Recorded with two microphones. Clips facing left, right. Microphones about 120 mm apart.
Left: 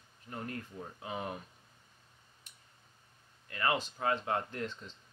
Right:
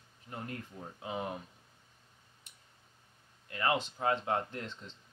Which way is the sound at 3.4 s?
20° right (ahead or behind).